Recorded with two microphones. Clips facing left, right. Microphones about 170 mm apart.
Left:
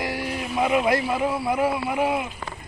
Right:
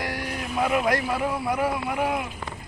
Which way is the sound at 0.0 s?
10° left (ahead or behind).